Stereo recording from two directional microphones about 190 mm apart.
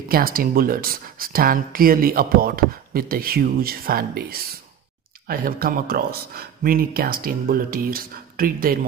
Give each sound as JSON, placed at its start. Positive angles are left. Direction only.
{"t": 0.1, "sound": "speech", "side_deg": -50}